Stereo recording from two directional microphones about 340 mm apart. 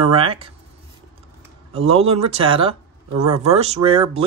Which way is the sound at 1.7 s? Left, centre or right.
Centre.